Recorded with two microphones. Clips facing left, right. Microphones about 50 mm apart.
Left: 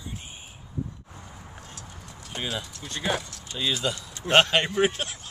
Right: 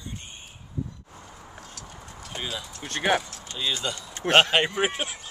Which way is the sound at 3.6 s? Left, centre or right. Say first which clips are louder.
Left 2 dB; centre.